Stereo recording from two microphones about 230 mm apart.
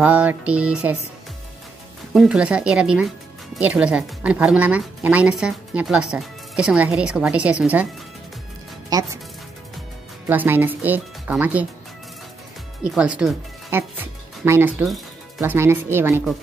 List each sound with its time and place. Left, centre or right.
0.0 s speech: centre
2.1 s speech: centre
8.9 s speech: centre
10.2 s speech: centre
12.9 s speech: centre